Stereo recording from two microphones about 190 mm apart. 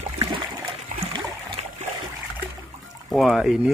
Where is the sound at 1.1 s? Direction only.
35° right (ahead or behind).